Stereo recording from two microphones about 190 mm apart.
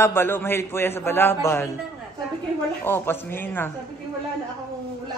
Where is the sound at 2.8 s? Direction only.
10° left (ahead or behind).